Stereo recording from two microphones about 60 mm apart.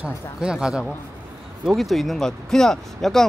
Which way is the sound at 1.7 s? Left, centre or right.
Centre.